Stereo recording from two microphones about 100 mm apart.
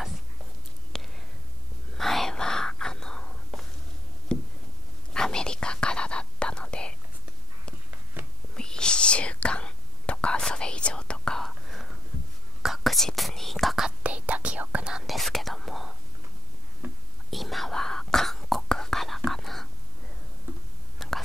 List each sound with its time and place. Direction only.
0.9 s whispering: 5° left (ahead or behind)
4.3 s a sound: 10° left (ahead or behind)
5.1 s whispering: 5° left (ahead or behind)
8.5 s whispering: 5° left (ahead or behind)
16.8 s whispering: 20° right (ahead or behind)
17.3 s whispering: centre (ahead or behind)
21.0 s whispering: centre (ahead or behind)